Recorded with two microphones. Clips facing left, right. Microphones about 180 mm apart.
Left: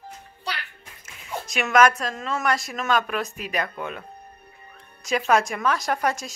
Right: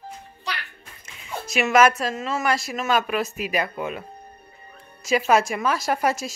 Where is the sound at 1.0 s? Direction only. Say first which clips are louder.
Even; 5° right (ahead or behind).